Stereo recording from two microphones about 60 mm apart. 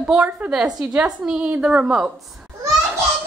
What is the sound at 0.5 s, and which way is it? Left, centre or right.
Speech, centre.